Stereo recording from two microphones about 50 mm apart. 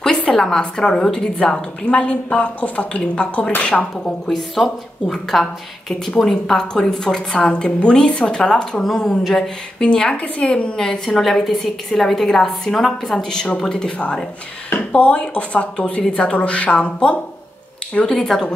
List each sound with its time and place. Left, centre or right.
0.3 s a woman's voice: centre
4.3 s a woman's voice: centre; by 10.7 s left
10.8 s a woman's voice: centre
18.0 s a woman's voice: centre